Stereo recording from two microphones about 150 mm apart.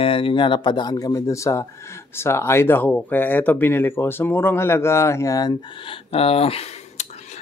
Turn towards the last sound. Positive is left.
turn(degrees=40)  # may be behind; listen again after turning